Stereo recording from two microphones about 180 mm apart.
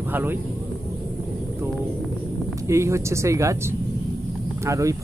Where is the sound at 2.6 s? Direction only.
15° right (ahead or behind).